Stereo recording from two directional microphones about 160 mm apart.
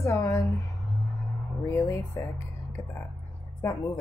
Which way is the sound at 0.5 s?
Centre (ahead or behind).